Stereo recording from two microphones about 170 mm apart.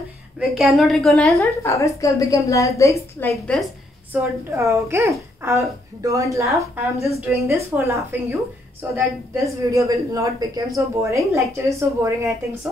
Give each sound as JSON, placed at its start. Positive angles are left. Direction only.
{"t": 0.4, "sound": "a woman's voice", "side_deg": 0}
{"t": 1.4, "sound": "a woman's voice", "side_deg": 15}
{"t": 3.5, "sound": "a woman's voice", "side_deg": 5}
{"t": 4.1, "sound": "speech", "side_deg": -15}